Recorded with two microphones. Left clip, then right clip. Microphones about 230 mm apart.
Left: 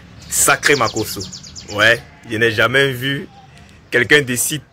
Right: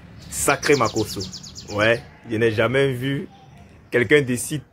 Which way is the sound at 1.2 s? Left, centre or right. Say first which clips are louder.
Left 3 dB; right.